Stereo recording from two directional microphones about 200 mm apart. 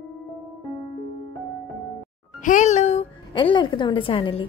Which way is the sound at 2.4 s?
35° left (ahead or behind).